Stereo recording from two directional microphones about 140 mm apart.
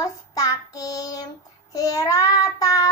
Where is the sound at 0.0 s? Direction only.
25° left (ahead or behind).